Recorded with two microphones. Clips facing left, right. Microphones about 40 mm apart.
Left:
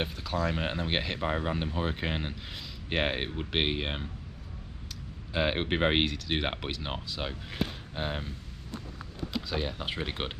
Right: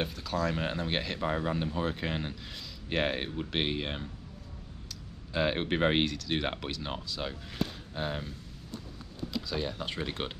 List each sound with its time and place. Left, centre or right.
0.0 s speech: centre
5.3 s speech: left
9.3 s speech: left